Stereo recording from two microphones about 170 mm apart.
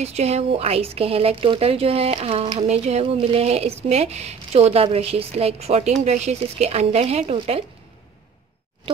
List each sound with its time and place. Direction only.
0.0 s speech: 40° right (ahead or behind)